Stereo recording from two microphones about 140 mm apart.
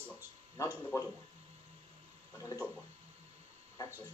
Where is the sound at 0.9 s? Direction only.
25° left (ahead or behind).